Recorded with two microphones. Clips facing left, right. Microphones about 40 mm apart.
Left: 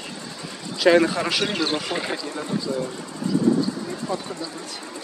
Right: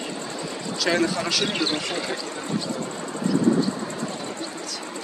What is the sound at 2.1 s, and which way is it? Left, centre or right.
Speech, right.